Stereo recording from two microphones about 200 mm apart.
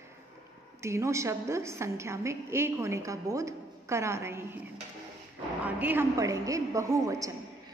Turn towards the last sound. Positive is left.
turn(degrees=-15)  # may be behind; listen again after turning